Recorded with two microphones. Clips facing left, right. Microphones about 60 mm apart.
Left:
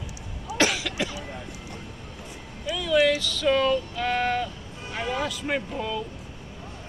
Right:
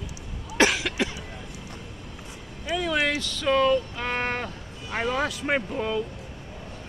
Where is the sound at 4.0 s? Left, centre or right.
Right.